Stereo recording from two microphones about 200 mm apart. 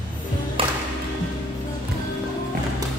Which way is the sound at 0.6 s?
25° right (ahead or behind).